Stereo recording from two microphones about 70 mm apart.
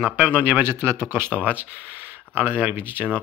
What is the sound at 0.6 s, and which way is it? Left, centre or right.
Speech, right.